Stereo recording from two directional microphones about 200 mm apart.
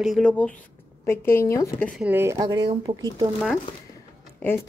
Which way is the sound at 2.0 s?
10° right (ahead or behind).